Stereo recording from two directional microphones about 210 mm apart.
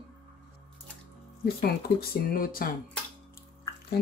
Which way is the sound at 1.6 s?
45° left (ahead or behind).